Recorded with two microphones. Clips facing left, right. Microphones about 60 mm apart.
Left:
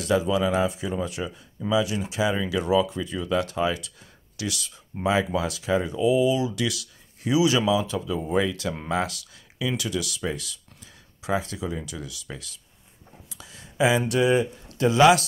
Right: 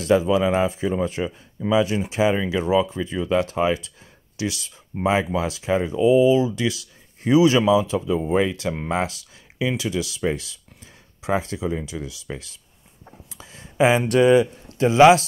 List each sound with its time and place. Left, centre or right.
0.0 s speech: right
13.4 s a sound: right
14.7 s a man's voice: right